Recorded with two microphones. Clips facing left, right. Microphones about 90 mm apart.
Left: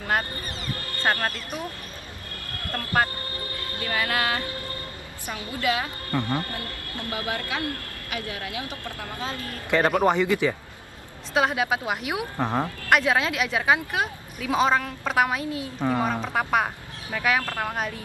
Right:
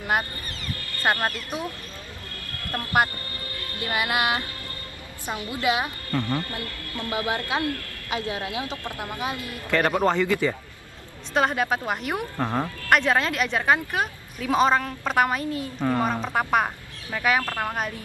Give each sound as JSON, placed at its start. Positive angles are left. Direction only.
{"t": 1.1, "sound": "speech", "side_deg": -20}
{"t": 2.7, "sound": "speech", "side_deg": -20}
{"t": 5.5, "sound": "speech", "side_deg": -20}
{"t": 6.1, "sound": "speech", "side_deg": 20}
{"t": 7.1, "sound": "speech", "side_deg": -20}
{"t": 9.7, "sound": "speech", "side_deg": 20}
{"t": 11.3, "sound": "a woman's voice", "side_deg": 5}
{"t": 12.4, "sound": "speech", "side_deg": 15}
{"t": 12.9, "sound": "a woman's voice", "side_deg": 5}